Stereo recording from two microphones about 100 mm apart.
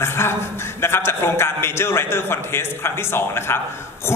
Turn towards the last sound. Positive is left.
turn(degrees=25)  # may be behind; listen again after turning